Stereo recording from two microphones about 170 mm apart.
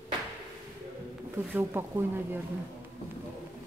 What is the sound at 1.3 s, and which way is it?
Speech, 15° right (ahead or behind).